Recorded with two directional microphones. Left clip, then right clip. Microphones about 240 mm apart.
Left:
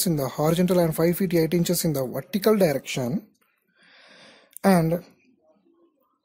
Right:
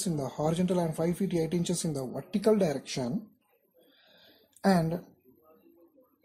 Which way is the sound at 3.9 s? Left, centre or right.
Left.